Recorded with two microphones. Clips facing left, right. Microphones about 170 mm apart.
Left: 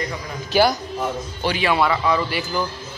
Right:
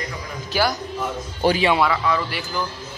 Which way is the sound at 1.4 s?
45° right (ahead or behind).